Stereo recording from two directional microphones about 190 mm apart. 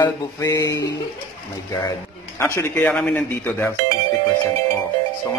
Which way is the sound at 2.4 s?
15° left (ahead or behind).